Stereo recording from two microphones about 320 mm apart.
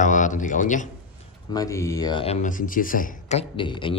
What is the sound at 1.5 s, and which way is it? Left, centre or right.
Speech, centre.